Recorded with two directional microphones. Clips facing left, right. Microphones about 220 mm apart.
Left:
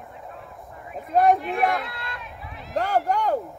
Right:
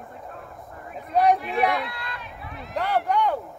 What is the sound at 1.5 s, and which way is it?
Speech, 50° left (ahead or behind).